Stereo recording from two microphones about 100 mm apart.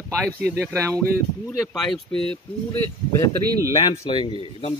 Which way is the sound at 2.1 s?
60° right (ahead or behind).